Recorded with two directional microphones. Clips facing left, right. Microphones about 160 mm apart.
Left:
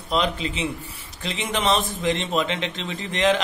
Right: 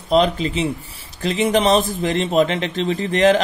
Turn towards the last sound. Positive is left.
turn(degrees=-35)  # may be behind; listen again after turning